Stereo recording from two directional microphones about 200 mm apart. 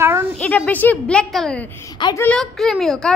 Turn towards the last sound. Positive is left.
turn(degrees=0)  # may be behind; listen again after turning